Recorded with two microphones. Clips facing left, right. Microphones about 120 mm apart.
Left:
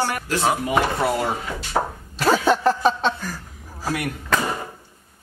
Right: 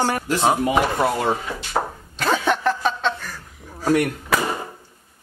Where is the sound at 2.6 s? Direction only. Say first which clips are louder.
Left 2 dB; 35° left (ahead or behind).